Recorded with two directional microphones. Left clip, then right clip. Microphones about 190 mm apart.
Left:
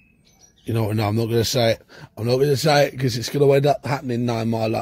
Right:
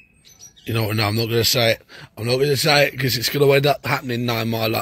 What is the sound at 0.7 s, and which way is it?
A man's voice, 15° left (ahead or behind).